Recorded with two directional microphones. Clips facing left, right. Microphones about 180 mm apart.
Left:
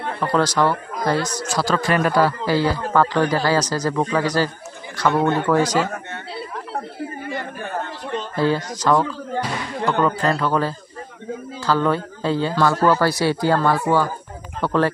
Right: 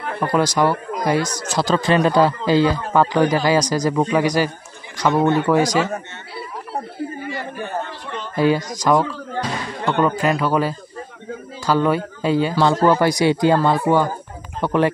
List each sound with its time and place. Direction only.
0.2 s speech: 10° right (ahead or behind)
8.4 s speech: 15° right (ahead or behind)